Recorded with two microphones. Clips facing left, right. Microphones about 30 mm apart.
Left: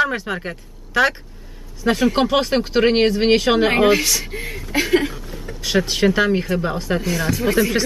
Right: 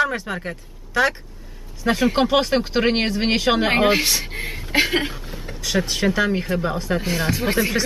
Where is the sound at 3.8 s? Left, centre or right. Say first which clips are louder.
Left 2 dB; centre.